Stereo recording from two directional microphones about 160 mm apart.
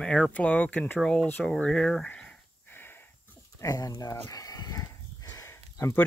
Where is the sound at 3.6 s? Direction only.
25° left (ahead or behind).